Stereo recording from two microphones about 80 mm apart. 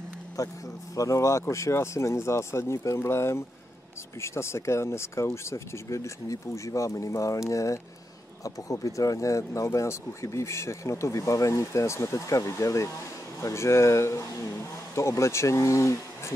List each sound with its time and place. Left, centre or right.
0.4 s speech: left